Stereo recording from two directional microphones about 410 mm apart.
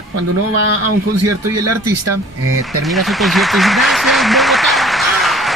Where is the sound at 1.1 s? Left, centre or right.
Right.